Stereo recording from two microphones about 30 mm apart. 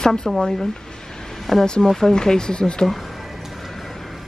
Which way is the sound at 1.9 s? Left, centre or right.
Centre.